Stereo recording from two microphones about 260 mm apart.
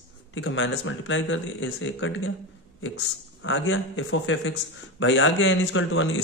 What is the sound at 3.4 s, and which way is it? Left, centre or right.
Speech, left.